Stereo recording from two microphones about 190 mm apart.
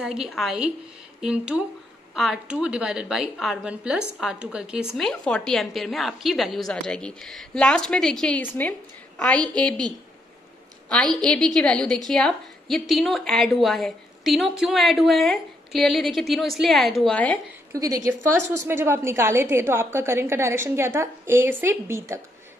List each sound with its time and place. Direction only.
0.0 s a woman's voice: 5° right (ahead or behind)
10.9 s a woman's voice: 5° left (ahead or behind)
17.7 s a woman's voice: 20° right (ahead or behind)